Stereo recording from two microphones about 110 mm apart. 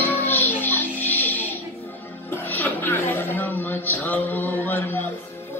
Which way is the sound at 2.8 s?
15° left (ahead or behind).